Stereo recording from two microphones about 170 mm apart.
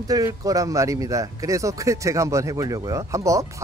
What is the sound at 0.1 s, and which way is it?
A man's voice, 20° right (ahead or behind).